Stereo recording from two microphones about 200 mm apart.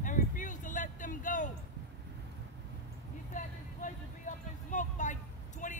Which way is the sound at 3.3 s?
40° left (ahead or behind).